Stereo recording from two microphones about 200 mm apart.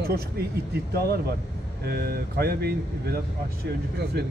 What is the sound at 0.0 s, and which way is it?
Speech, 50° right (ahead or behind).